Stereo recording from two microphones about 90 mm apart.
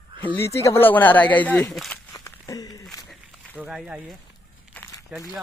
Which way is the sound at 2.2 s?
45° left (ahead or behind).